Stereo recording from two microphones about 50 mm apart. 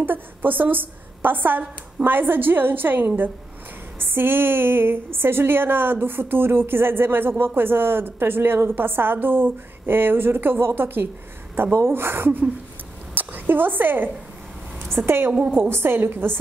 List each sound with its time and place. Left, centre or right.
0.0 s a woman's voice: right